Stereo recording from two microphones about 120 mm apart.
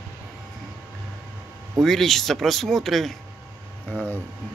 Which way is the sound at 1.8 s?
Centre (ahead or behind).